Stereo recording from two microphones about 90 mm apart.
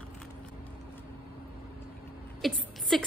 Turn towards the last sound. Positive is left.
turn(degrees=5)  # may be behind; listen again after turning